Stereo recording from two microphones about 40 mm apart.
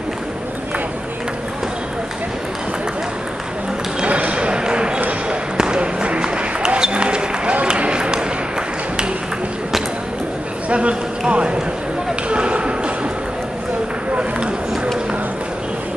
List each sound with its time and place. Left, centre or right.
4.0 s basketball bounce: right
7.6 s run: right
10.7 s a sound: right
12.3 s basketball bounce: right